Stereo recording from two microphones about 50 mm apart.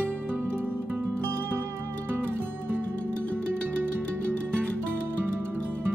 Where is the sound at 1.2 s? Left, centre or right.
Right.